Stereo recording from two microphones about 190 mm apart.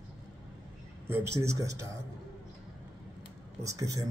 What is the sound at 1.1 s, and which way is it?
Speech, 15° right (ahead or behind).